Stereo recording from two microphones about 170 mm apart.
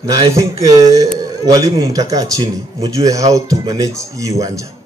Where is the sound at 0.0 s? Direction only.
20° right (ahead or behind).